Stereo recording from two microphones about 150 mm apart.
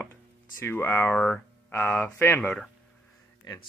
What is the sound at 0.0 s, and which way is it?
Speech, 15° left (ahead or behind).